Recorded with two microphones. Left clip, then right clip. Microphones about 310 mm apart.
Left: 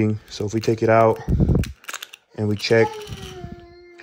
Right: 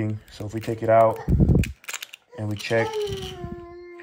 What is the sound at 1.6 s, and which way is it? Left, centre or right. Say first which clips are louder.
Cap gun: even; centre.